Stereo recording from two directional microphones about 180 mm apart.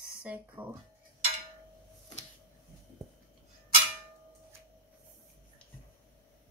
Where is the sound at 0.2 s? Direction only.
10° right (ahead or behind).